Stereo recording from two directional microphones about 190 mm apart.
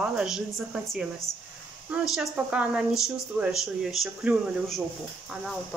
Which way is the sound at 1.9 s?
5° right (ahead or behind).